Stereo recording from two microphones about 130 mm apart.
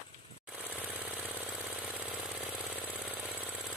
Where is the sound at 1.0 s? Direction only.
10° right (ahead or behind).